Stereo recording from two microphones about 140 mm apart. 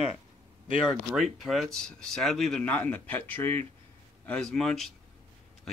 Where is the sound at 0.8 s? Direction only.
Centre (ahead or behind).